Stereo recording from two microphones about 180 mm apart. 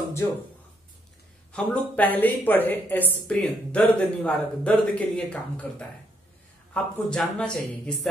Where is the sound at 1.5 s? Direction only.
5° left (ahead or behind).